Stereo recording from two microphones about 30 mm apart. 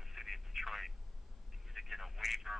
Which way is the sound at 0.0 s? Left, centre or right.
Centre.